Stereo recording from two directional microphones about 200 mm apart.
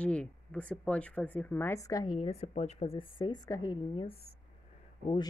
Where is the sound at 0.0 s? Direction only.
5° left (ahead or behind).